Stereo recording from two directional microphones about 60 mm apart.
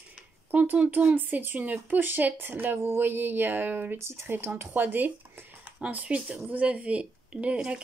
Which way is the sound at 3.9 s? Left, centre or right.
Right.